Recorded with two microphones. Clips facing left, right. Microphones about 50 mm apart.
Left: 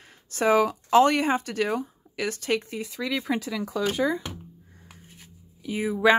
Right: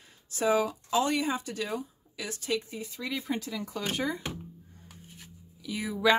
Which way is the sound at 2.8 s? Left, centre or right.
Left.